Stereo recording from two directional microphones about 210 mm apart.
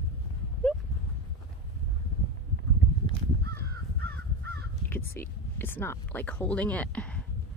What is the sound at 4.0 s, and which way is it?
Crow, 50° right (ahead or behind).